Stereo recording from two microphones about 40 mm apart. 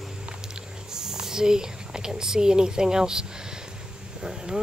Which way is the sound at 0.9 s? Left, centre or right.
Centre.